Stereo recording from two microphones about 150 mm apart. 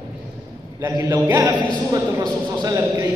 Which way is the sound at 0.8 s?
20° right (ahead or behind).